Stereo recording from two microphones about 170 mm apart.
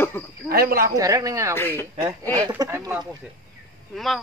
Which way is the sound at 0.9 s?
20° right (ahead or behind).